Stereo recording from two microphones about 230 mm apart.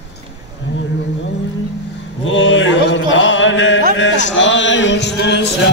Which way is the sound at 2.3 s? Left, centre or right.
Left.